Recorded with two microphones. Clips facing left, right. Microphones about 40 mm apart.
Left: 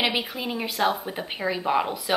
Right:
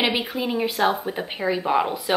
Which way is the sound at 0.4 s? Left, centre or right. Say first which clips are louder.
Right 5 dB; centre.